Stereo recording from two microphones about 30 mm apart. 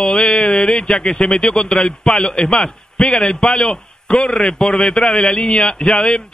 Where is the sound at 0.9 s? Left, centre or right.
Left.